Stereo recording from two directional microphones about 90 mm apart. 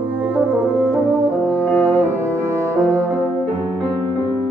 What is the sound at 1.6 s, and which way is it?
Music, 25° left (ahead or behind).